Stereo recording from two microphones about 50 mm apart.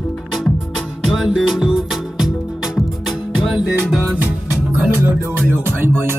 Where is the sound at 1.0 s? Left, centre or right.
Centre.